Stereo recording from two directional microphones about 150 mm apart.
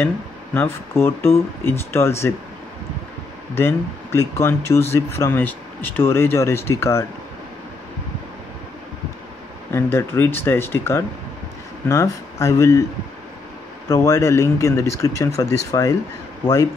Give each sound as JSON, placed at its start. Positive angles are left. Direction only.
{"t": 0.6, "sound": "speech", "side_deg": 15}
{"t": 3.5, "sound": "speech", "side_deg": 15}
{"t": 9.7, "sound": "speech", "side_deg": 15}
{"t": 13.8, "sound": "speech", "side_deg": 20}